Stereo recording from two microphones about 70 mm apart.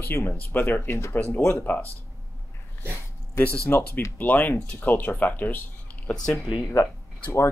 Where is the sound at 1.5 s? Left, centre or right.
Left.